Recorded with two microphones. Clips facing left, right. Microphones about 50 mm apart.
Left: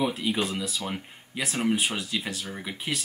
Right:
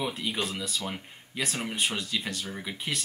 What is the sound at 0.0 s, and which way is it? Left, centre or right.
Speech, centre.